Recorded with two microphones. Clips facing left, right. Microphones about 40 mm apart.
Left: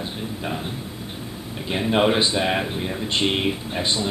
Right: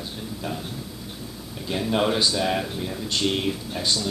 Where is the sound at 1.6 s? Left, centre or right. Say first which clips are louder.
Left 3 dB; left.